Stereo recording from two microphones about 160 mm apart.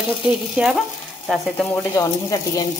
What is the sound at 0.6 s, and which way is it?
Frying, 5° right (ahead or behind).